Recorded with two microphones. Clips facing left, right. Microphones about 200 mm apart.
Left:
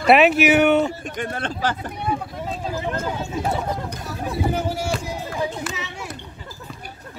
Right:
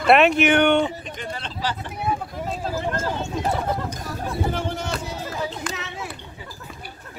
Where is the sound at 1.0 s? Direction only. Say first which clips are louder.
Left 5 dB; 55° left (ahead or behind).